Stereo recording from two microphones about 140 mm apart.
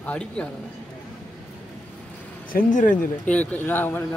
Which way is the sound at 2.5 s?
70° left (ahead or behind).